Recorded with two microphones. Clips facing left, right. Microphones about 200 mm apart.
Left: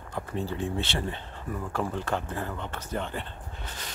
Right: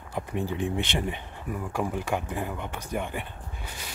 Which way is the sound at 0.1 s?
15° right (ahead or behind).